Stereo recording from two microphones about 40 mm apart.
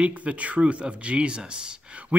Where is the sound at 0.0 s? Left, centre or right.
Right.